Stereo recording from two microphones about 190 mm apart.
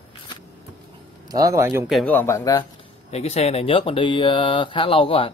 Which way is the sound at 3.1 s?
35° left (ahead or behind).